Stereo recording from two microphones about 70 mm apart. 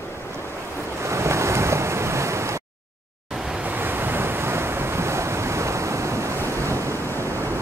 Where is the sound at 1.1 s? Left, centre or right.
Right.